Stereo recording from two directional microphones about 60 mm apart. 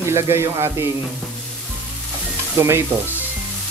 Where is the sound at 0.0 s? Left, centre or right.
Right.